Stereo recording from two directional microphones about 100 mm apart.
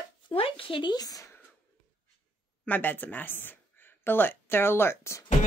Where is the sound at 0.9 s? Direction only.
40° left (ahead or behind).